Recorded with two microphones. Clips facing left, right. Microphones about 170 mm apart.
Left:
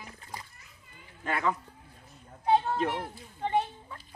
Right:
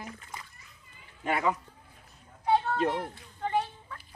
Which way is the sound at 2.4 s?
25° left (ahead or behind).